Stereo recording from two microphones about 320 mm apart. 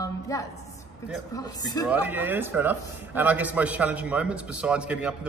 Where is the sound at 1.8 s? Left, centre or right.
Centre.